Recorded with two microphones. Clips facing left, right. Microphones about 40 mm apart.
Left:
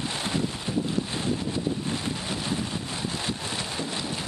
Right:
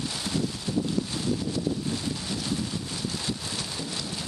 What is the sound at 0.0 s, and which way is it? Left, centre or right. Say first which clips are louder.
Wind noise: left 1 dB; left.